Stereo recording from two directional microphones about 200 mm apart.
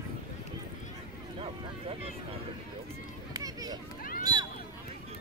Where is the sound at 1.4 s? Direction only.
30° right (ahead or behind).